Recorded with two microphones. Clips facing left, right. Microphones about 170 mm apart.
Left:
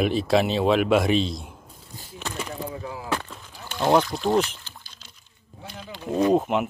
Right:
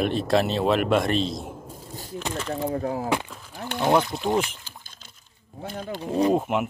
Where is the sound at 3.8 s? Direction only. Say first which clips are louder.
Left 1 dB; centre (ahead or behind).